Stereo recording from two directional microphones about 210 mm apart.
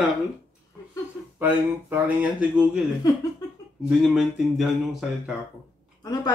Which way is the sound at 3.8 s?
Centre (ahead or behind).